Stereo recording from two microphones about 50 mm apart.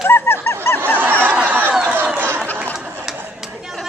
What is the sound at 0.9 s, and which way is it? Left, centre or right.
Snicker, right.